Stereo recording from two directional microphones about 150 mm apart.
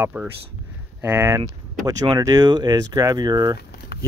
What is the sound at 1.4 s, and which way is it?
Speech, 30° right (ahead or behind).